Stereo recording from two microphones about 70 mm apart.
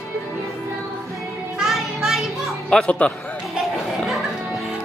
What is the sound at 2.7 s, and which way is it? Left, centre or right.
Speech, centre.